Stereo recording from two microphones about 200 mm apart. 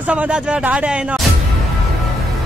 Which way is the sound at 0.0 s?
5° right (ahead or behind).